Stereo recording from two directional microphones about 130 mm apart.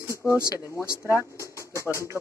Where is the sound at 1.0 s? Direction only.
20° right (ahead or behind).